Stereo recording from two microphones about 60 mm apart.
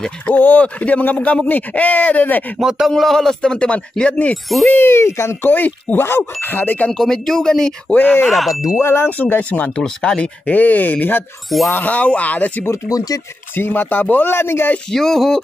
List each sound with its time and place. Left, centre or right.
0.3 s speech: left
2.9 s speech: centre
4.6 s speech: left
5.4 s speech: left
6.9 s speech: centre
7.9 s speech: left
8.3 s speech: centre
8.7 s speech: left
9.4 s speech: left
9.8 s speech: centre
12.8 s speech: left
13.6 s speech: left
14.9 s speech: centre